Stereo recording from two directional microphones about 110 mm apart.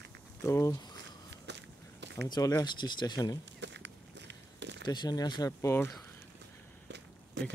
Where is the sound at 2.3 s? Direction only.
40° left (ahead or behind).